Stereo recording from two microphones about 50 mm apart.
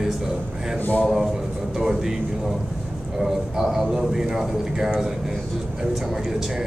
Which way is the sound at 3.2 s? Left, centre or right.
Centre.